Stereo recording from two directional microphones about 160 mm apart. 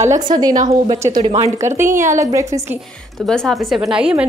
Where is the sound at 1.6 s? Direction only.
15° right (ahead or behind).